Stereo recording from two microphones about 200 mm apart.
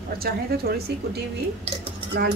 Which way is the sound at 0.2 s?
50° right (ahead or behind).